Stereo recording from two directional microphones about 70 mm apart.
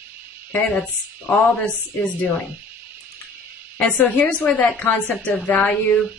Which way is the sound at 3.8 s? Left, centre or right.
Left.